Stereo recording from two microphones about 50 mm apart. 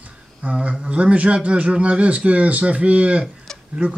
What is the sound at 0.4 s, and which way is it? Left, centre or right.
A man's voice, right.